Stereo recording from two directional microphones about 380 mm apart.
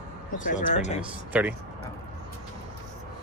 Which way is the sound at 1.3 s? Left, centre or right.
Centre.